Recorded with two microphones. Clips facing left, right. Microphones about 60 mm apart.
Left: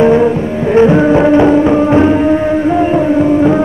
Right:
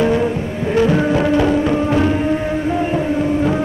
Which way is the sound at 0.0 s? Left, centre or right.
Left.